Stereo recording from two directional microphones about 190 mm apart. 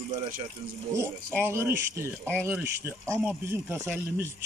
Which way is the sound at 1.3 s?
10° right (ahead or behind).